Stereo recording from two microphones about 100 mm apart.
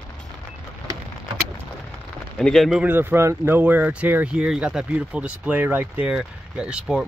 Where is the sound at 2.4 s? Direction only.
Centre (ahead or behind).